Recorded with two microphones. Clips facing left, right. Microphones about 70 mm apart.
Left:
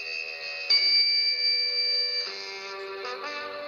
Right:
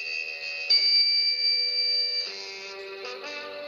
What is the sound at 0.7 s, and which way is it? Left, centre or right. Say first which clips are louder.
Music: left 2 dB; left.